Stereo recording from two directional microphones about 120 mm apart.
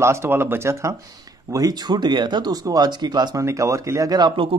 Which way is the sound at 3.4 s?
25° right (ahead or behind).